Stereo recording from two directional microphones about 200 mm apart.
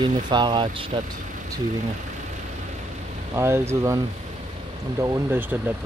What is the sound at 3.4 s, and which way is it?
Speech, 10° right (ahead or behind).